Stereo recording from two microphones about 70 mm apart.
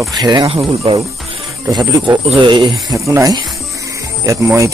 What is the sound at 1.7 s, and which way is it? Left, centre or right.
Speech, right.